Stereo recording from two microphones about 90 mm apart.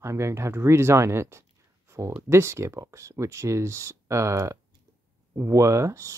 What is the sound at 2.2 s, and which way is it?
Speech, 30° right (ahead or behind).